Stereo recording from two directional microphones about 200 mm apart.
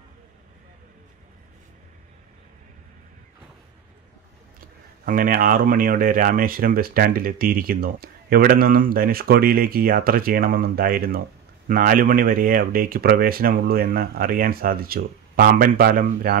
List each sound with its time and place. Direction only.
4.6 s speech: 45° right (ahead or behind)